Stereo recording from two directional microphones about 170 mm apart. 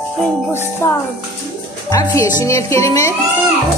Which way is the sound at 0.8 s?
15° left (ahead or behind).